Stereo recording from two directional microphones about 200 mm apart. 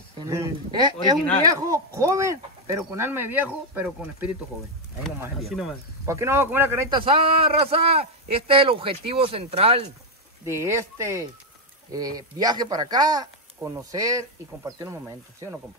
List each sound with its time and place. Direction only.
0.2 s speech: 15° right (ahead or behind); by 5.8 s centre (ahead or behind)
6.0 s speech: 15° right (ahead or behind)
6.9 s speech: 25° right (ahead or behind)
10.4 s speech: 15° right (ahead or behind)